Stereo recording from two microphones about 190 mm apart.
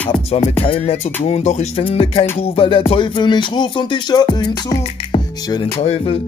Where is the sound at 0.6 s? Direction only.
30° left (ahead or behind).